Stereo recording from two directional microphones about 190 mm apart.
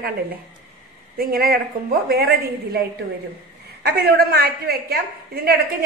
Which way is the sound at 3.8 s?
60° right (ahead or behind).